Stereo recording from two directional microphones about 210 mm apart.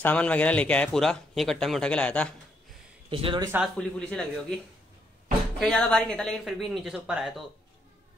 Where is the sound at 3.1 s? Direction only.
25° right (ahead or behind).